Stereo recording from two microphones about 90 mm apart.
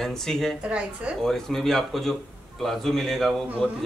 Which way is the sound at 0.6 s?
10° right (ahead or behind).